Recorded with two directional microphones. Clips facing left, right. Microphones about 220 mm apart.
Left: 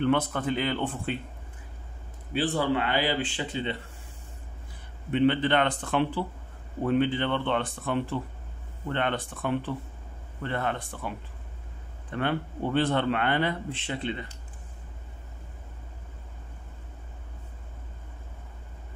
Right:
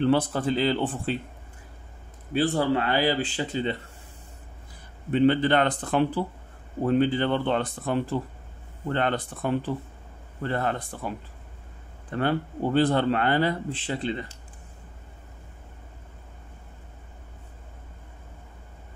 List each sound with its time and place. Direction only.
0.0 s a man's voice: 35° right (ahead or behind)
2.3 s a man's voice: 40° right (ahead or behind)
5.1 s a man's voice: 40° right (ahead or behind)